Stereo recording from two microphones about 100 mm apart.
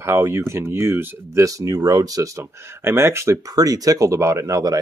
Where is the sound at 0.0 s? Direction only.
25° right (ahead or behind).